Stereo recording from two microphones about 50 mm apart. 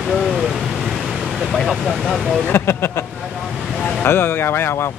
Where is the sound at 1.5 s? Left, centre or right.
Centre.